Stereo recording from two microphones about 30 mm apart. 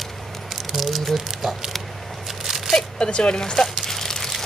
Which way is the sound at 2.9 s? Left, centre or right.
Left.